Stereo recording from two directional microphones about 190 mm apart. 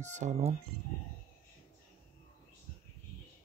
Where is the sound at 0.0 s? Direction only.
40° right (ahead or behind).